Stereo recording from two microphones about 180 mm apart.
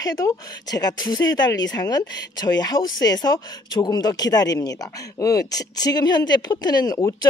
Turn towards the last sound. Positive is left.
turn(degrees=20)  # may be behind; listen again after turning